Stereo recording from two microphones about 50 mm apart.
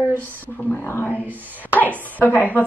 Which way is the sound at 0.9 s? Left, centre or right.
Left.